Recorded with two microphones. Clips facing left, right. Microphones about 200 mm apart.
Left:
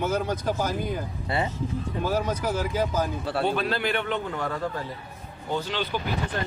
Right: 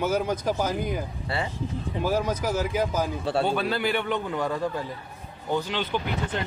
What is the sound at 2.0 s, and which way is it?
Speech, 10° right (ahead or behind).